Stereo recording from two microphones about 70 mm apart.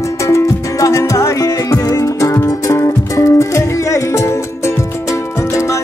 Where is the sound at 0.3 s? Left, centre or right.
Left.